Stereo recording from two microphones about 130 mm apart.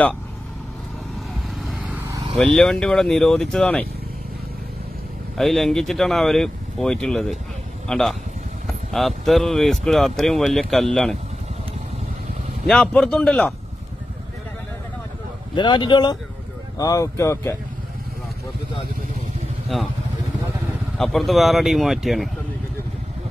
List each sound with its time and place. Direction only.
2.3 s speech: 5° left (ahead or behind)
5.4 s speech: centre (ahead or behind)
12.6 s speech: 5° left (ahead or behind)
15.5 s speech: 35° left (ahead or behind)
21.0 s speech: centre (ahead or behind)